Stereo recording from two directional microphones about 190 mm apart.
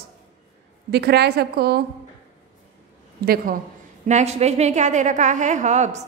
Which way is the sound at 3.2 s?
50° right (ahead or behind).